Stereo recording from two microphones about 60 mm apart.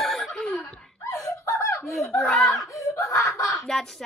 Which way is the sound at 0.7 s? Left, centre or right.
Centre.